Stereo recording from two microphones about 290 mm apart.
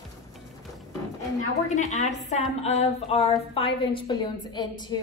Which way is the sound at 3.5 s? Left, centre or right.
Centre.